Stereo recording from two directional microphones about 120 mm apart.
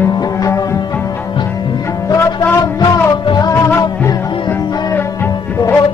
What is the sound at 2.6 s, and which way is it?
Music, 35° left (ahead or behind).